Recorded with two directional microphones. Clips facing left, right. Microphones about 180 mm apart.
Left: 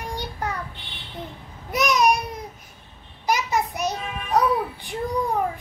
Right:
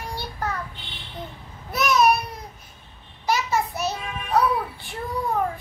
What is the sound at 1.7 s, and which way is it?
Babbling, 15° left (ahead or behind).